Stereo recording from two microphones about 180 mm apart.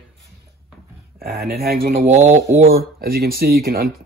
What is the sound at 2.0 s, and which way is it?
Speech, 40° right (ahead or behind).